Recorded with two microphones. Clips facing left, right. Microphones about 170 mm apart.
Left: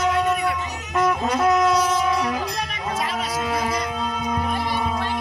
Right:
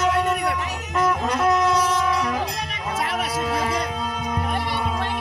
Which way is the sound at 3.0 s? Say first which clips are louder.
Right 2 dB; 65° right (ahead or behind).